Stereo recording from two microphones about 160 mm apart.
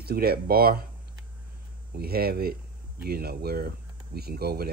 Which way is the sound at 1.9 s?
75° right (ahead or behind).